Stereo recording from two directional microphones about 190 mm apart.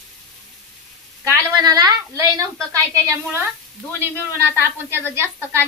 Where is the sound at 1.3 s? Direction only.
20° right (ahead or behind).